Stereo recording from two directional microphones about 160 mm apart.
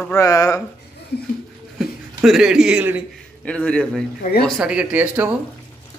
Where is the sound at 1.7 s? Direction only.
Centre (ahead or behind).